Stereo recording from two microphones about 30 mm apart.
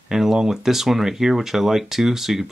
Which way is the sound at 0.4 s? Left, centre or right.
Centre.